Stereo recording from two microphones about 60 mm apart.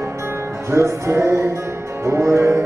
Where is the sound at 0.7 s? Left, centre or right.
Right.